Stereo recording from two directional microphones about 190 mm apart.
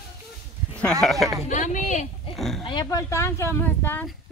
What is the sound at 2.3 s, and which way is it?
Oink, centre (ahead or behind).